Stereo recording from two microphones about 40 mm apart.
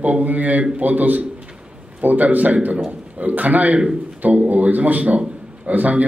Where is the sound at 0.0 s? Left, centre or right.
Right.